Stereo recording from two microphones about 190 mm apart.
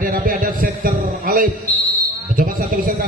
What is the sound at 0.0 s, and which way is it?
A man's voice, 45° right (ahead or behind).